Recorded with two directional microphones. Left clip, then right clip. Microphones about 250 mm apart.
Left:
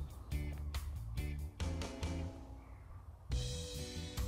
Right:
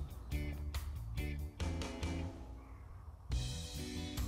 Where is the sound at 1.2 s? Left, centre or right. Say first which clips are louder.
Right 2 dB; centre.